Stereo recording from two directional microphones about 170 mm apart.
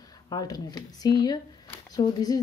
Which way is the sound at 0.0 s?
20° left (ahead or behind).